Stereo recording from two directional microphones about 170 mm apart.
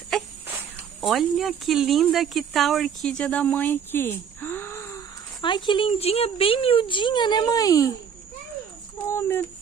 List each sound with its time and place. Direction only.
1.0 s speech: centre (ahead or behind); by 5.0 s 15° left (ahead or behind)
5.4 s speech: 30° left (ahead or behind)
8.9 s speech: 10° left (ahead or behind)